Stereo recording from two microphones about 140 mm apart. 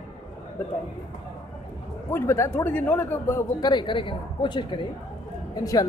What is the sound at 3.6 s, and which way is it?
Speech, 30° left (ahead or behind).